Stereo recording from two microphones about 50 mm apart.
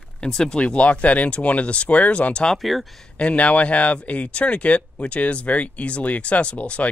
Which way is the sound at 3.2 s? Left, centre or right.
Left.